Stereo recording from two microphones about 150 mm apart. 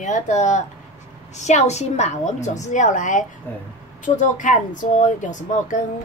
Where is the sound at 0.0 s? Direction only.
55° left (ahead or behind).